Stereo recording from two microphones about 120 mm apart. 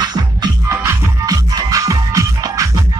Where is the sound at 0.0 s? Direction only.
35° right (ahead or behind).